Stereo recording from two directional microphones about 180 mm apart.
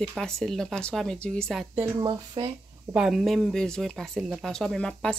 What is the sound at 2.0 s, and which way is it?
Speech, 25° right (ahead or behind).